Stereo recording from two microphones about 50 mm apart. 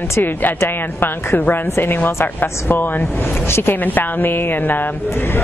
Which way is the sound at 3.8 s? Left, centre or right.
Left.